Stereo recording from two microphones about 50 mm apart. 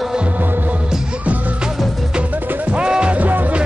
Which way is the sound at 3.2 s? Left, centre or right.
Right.